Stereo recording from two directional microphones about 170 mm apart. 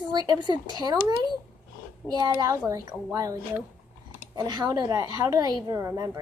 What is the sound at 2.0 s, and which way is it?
Speech, 10° left (ahead or behind).